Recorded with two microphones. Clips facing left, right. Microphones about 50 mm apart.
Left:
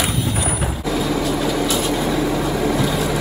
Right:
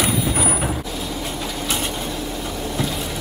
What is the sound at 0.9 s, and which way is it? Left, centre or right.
Vehicle, left.